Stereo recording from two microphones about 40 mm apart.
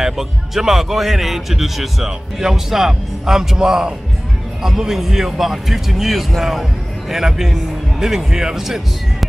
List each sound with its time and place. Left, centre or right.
0.0 s speech: centre